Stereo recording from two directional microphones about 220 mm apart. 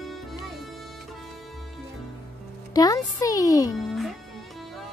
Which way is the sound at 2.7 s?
15° left (ahead or behind).